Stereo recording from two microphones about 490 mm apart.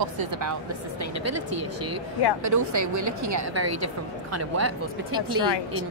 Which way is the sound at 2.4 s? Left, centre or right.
Right.